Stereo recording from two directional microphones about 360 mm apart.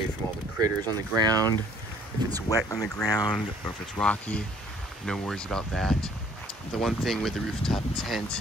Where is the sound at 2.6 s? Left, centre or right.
Centre.